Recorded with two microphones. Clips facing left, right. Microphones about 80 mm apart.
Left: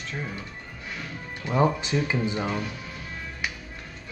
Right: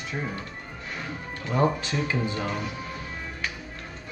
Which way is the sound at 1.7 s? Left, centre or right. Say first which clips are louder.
Left 1 dB; centre.